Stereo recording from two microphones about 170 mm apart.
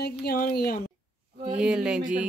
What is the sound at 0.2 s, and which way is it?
Speech, 65° left (ahead or behind).